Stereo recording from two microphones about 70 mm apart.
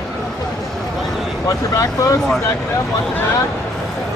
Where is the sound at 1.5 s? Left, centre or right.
Left.